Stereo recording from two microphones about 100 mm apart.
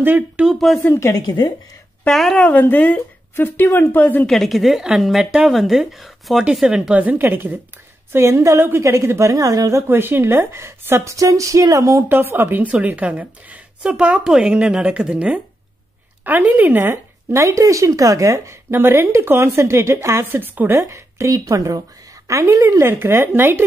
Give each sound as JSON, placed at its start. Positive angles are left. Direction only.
{"t": 0.0, "sound": "speech", "side_deg": -20}
{"t": 0.5, "sound": "speech", "side_deg": 0}
{"t": 0.8, "sound": "speech", "side_deg": 30}
{"t": 1.2, "sound": "a woman's voice", "side_deg": 45}
{"t": 2.0, "sound": "speech", "side_deg": 5}
{"t": 2.4, "sound": "speech", "side_deg": 15}
{"t": 4.3, "sound": "speech", "side_deg": 0}